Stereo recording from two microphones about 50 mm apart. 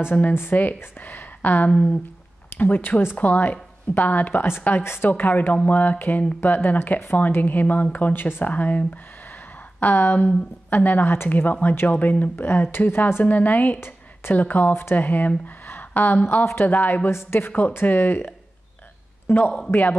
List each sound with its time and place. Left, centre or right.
0.3 s speech: left
5.1 s speech: left
12.4 s speech: left
13.7 s a sound: left
14.3 s speech: left